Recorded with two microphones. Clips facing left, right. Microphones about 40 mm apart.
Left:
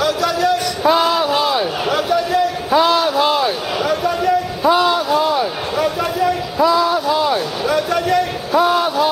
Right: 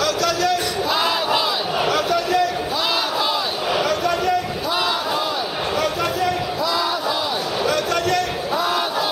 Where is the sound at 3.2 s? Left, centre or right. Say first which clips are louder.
Left 6 dB; left.